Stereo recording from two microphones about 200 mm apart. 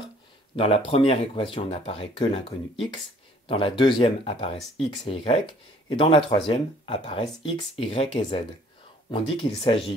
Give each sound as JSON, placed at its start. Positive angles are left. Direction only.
{"t": 0.6, "sound": "speech", "side_deg": 30}
{"t": 3.4, "sound": "speech", "side_deg": 25}